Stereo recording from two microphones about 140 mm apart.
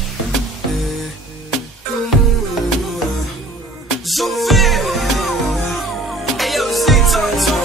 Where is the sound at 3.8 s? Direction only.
Centre (ahead or behind).